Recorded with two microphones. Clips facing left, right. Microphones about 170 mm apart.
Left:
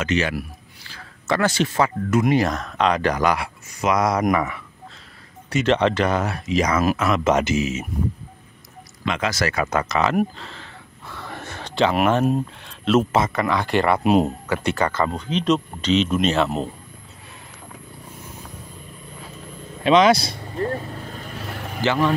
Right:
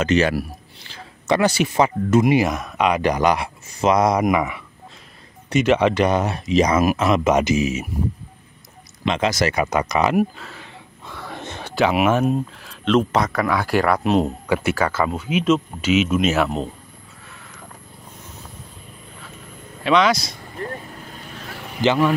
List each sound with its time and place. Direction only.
0.0 s speech: 40° right (ahead or behind)
0.8 s speech: 20° right (ahead or behind)
4.2 s speech: 10° right (ahead or behind)
9.0 s speech: 20° right (ahead or behind)
10.1 s a sound: 5° right (ahead or behind)
11.6 s speech: 10° right (ahead or behind); by 14.3 s 10° left (ahead or behind)
14.5 s speech: 5° right (ahead or behind)
19.8 s speech: 25° left (ahead or behind)
21.8 s speech: 15° right (ahead or behind)